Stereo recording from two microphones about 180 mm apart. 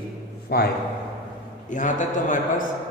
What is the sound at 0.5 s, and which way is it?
Speech, 60° left (ahead or behind).